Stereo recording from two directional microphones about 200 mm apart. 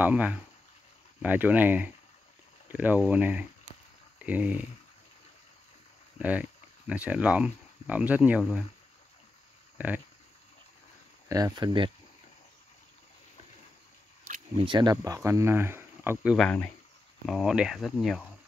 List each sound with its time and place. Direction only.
0.0 s speech: 5° right (ahead or behind)
6.1 s speech: 5° right (ahead or behind)
9.8 s speech: 10° right (ahead or behind)
11.2 s speech: 15° right (ahead or behind)
14.6 s speech: 25° right (ahead or behind); by 16.4 s 5° right (ahead or behind)
16.4 s speech: 10° left (ahead or behind)
17.3 s speech: 5° right (ahead or behind)